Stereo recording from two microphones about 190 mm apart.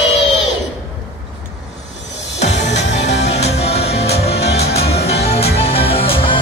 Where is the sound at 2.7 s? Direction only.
65° left (ahead or behind).